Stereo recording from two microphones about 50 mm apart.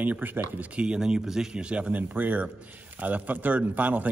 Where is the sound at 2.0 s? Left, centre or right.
Right.